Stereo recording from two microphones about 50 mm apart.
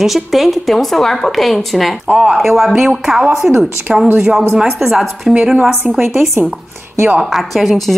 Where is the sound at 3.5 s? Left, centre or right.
Right.